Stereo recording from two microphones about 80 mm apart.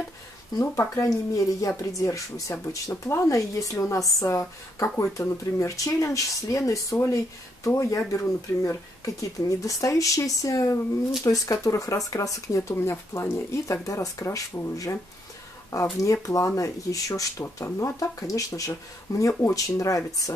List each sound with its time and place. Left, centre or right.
0.6 s speech: left
15.7 s speech: left